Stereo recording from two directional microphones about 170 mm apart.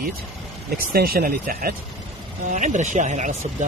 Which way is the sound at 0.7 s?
65° right (ahead or behind).